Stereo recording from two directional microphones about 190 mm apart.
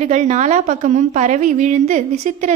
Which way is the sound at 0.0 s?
40° right (ahead or behind).